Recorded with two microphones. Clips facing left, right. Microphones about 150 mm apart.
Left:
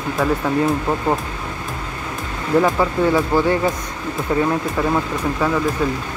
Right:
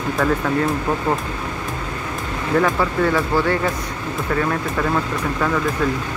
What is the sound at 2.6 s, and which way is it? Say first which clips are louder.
Speech: left 2 dB; 15° left (ahead or behind).